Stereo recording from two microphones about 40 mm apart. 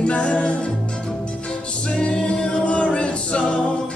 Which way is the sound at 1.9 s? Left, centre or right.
Left.